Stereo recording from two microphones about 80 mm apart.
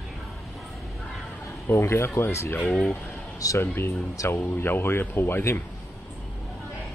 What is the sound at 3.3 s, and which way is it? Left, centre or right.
Speech, left.